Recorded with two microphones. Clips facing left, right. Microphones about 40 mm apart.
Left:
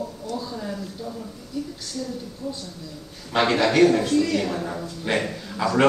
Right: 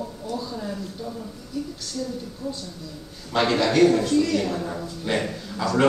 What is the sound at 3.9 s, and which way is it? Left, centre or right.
A woman's voice, centre.